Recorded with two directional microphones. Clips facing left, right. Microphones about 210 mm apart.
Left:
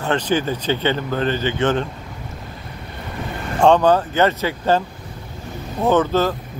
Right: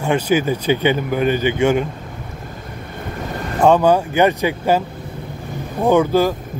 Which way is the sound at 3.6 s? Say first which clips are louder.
Right 1 dB; 10° right (ahead or behind).